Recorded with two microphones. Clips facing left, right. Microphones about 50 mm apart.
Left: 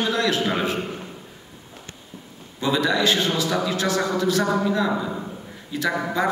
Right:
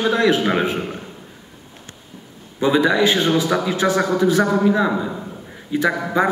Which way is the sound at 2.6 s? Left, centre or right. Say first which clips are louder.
Right 5 dB; right.